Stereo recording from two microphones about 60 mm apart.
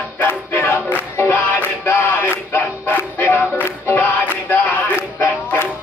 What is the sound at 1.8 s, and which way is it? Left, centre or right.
Music, left.